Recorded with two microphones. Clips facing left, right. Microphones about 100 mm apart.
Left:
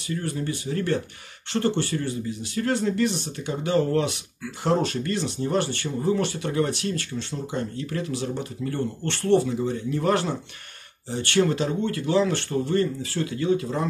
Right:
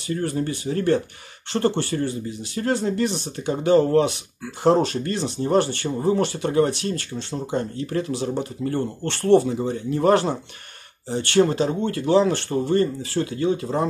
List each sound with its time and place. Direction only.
0.1 s speech: 40° right (ahead or behind)